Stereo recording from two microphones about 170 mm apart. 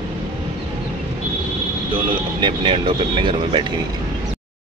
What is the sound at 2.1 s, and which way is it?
Speech, 30° right (ahead or behind).